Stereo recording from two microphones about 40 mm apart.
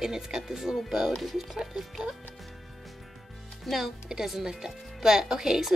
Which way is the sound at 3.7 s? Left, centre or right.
Centre.